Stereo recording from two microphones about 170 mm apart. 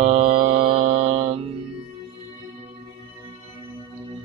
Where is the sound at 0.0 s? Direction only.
40° right (ahead or behind).